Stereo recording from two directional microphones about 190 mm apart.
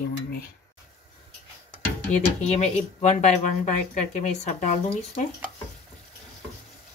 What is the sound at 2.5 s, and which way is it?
Speech, 35° left (ahead or behind).